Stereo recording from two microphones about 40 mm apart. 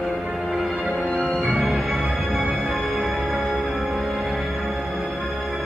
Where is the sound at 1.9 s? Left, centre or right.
Right.